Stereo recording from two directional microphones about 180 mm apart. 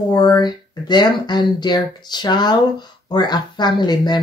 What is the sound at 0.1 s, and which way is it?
Speech, 25° left (ahead or behind).